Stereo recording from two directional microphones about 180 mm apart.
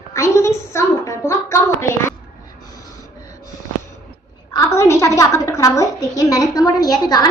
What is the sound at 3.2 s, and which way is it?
Wheeze, 20° left (ahead or behind).